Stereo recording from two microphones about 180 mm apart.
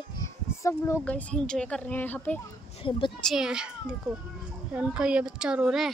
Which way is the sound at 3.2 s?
5° right (ahead or behind).